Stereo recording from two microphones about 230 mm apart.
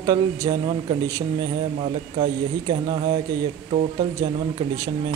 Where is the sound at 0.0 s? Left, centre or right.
Centre.